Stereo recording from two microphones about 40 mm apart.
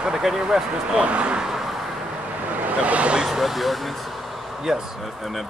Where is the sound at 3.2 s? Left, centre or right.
Centre.